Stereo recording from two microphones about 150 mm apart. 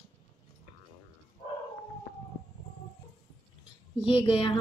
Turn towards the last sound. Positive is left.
turn(degrees=35)  # may be behind; listen again after turning